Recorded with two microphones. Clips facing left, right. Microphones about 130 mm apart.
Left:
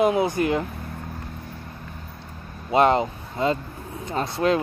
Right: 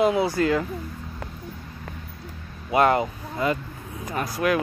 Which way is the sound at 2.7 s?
25° left (ahead or behind).